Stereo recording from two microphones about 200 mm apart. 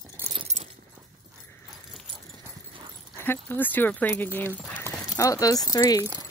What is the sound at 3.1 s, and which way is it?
Speech, 10° left (ahead or behind).